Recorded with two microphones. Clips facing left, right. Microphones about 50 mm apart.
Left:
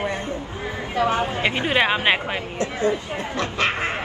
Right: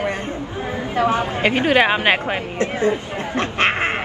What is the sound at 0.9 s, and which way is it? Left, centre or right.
Speech, right.